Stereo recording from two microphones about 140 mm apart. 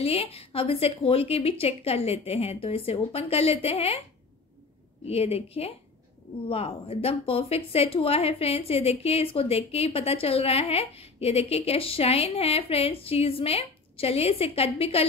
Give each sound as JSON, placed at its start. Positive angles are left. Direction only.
{"t": 0.0, "sound": "a woman's voice", "side_deg": 45}
{"t": 5.0, "sound": "a woman's voice", "side_deg": 45}